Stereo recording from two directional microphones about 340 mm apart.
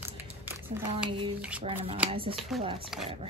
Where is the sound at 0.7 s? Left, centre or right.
Centre.